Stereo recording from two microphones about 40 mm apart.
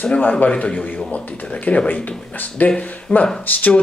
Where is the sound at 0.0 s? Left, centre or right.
Left.